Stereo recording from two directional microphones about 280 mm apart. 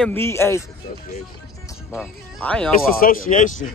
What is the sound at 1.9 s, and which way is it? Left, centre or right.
Speech, centre.